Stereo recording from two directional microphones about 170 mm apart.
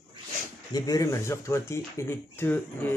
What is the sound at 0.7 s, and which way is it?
Speech, 20° left (ahead or behind).